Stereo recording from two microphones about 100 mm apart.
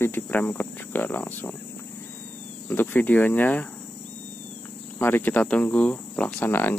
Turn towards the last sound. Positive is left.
turn(degrees=20)  # may be behind; listen again after turning